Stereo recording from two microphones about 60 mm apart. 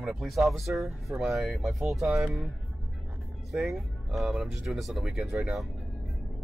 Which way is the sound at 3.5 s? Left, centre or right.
Centre.